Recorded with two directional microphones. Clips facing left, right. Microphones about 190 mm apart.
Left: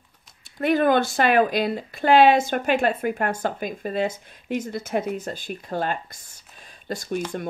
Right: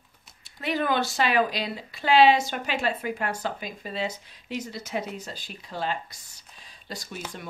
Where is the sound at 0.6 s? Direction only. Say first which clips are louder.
Left 7 dB; 50° left (ahead or behind).